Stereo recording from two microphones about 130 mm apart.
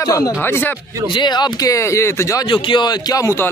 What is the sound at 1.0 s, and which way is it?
A man's voice, 35° left (ahead or behind).